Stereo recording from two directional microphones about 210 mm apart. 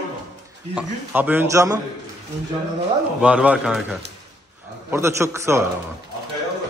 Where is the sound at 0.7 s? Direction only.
5° right (ahead or behind).